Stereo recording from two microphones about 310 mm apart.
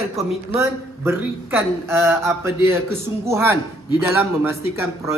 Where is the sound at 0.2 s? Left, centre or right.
Centre.